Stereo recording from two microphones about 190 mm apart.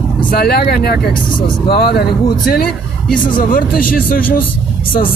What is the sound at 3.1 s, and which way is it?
Speech, 45° left (ahead or behind).